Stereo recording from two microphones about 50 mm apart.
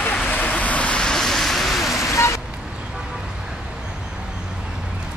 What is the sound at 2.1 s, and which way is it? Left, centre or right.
Vehicle, left.